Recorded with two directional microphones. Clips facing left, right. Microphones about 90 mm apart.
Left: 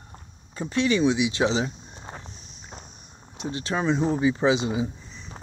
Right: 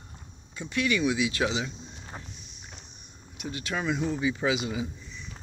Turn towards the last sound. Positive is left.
turn(degrees=35)  # may be behind; listen again after turning